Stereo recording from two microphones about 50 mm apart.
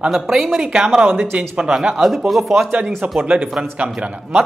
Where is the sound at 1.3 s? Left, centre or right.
Centre.